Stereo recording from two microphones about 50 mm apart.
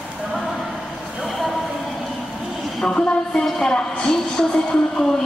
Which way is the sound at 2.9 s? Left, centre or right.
Left.